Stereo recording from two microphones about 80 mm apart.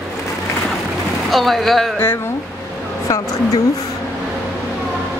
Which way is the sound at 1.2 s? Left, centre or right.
Centre.